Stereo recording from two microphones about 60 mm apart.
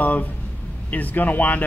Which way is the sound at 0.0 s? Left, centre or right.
Left.